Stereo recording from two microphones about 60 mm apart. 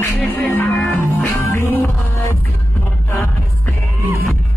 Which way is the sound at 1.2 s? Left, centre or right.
Left.